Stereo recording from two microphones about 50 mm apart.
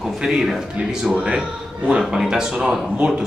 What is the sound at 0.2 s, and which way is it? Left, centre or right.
A man's voice, centre.